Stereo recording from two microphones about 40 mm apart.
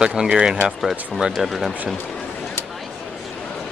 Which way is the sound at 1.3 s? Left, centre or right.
Centre.